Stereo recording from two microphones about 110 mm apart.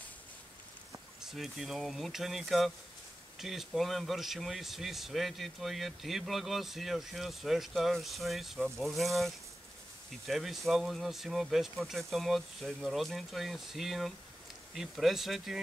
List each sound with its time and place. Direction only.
1.2 s speech: 5° right (ahead or behind)